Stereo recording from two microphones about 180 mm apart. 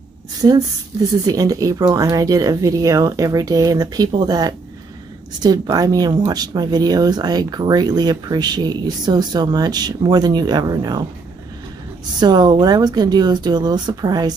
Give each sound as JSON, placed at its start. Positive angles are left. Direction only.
{"t": 0.4, "sound": "speech", "side_deg": -25}
{"t": 12.2, "sound": "speech", "side_deg": -25}